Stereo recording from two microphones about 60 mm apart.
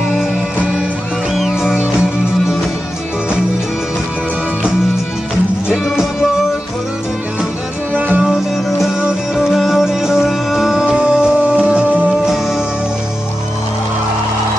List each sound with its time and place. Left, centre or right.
1.4 s music: centre
7.9 s music: right
9.3 s music: centre
12.3 s music: centre